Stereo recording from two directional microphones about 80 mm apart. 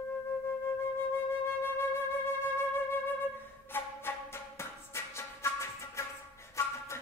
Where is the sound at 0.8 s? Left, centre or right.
Left.